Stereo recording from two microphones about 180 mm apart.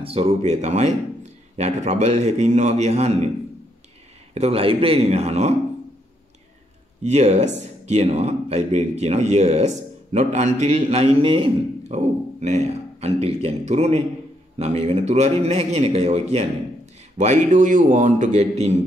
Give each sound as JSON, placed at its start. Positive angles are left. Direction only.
{"t": 0.0, "sound": "speech", "side_deg": -35}
{"t": 4.3, "sound": "speech", "side_deg": -35}
{"t": 7.0, "sound": "speech", "side_deg": -40}